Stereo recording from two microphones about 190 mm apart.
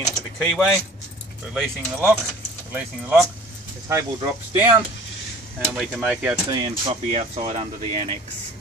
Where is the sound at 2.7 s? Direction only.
10° right (ahead or behind).